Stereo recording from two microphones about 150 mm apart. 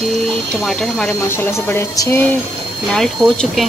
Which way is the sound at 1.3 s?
15° left (ahead or behind).